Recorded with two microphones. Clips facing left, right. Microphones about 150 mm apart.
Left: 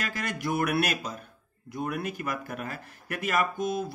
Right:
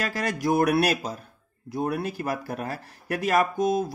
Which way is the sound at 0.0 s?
35° right (ahead or behind).